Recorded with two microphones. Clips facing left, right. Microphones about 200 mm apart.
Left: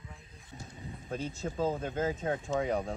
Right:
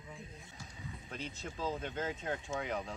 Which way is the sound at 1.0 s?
45° left (ahead or behind).